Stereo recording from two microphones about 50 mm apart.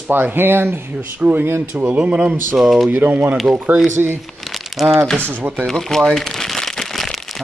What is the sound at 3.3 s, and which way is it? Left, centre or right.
Speech, centre.